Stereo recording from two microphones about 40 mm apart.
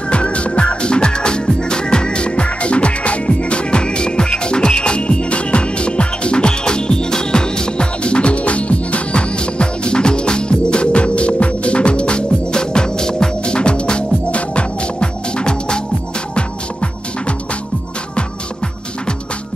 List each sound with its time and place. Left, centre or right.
0.1 s music: left